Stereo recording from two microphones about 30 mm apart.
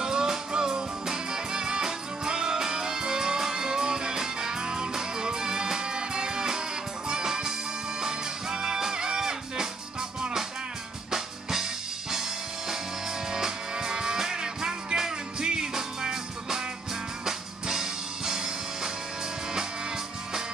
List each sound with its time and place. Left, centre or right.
0.0 s music: right
11.1 s music: centre